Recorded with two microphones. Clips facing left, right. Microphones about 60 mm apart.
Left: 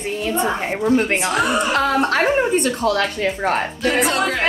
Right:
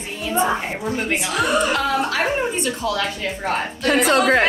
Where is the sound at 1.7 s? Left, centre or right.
Left.